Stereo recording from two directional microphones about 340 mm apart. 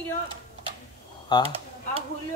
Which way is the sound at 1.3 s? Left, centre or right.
Centre.